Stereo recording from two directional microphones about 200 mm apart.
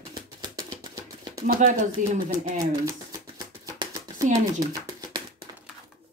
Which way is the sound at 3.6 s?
15° right (ahead or behind).